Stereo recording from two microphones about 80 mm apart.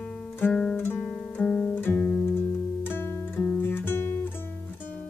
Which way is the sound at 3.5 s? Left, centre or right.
Left.